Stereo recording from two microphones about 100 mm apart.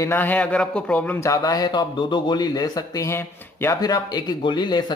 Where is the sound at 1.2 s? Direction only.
35° left (ahead or behind).